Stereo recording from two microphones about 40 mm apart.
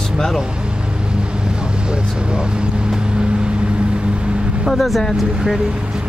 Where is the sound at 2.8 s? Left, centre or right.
Right.